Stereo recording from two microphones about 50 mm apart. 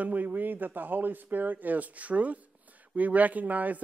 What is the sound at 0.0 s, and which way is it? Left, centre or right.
Speech, right.